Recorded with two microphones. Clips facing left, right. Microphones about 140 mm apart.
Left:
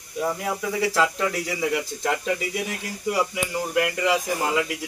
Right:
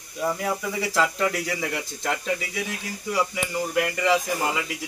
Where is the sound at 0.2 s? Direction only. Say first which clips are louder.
Even; 5° left (ahead or behind).